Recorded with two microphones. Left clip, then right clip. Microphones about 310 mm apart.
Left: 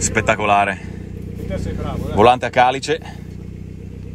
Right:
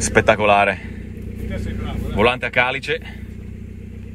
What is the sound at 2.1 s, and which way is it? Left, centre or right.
Speech, centre.